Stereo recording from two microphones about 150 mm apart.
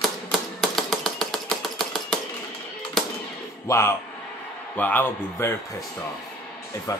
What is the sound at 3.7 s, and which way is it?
A man's voice, 20° left (ahead or behind).